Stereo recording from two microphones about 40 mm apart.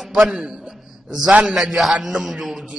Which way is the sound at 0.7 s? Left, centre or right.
Centre.